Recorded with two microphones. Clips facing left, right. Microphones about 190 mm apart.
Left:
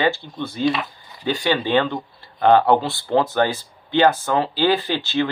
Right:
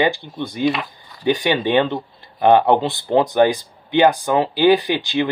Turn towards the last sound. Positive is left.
turn(degrees=-15)  # may be behind; listen again after turning